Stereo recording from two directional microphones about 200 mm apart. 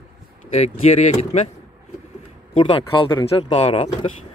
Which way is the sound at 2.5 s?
25° left (ahead or behind).